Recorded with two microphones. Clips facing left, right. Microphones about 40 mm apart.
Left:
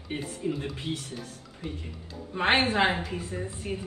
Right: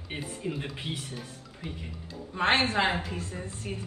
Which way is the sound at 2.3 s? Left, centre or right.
Centre.